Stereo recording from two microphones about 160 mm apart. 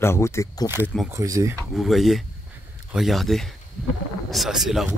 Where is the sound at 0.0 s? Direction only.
15° left (ahead or behind).